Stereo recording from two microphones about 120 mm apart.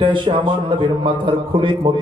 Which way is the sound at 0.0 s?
45° right (ahead or behind).